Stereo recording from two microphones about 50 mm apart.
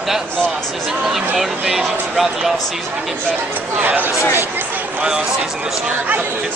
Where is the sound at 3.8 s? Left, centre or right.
Right.